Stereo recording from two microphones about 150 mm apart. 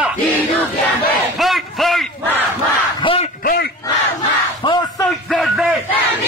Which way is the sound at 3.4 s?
80° left.